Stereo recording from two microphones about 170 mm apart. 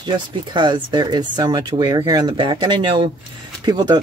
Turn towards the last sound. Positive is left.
turn(degrees=-25)  # may be behind; listen again after turning